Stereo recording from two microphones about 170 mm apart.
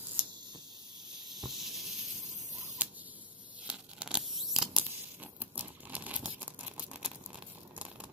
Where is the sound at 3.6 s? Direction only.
5° right (ahead or behind).